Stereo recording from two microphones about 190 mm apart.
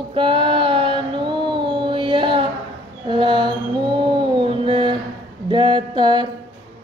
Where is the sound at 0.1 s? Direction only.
25° right (ahead or behind).